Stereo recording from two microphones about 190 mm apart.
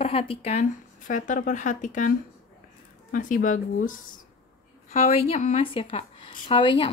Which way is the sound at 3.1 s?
45° left (ahead or behind).